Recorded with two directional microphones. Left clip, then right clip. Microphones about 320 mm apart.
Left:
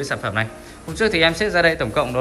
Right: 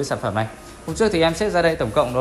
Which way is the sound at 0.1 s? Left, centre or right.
Centre.